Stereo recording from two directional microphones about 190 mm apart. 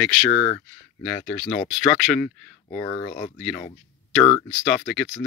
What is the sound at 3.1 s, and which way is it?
Speech, 45° left (ahead or behind).